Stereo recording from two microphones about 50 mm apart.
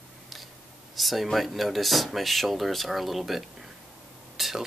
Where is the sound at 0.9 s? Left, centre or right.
Centre.